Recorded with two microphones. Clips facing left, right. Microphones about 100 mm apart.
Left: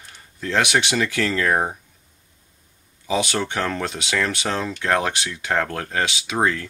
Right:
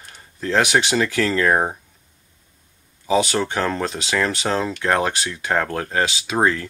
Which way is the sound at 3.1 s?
35° right (ahead or behind).